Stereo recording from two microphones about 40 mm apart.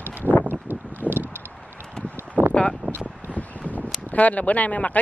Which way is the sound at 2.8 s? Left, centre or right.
Right.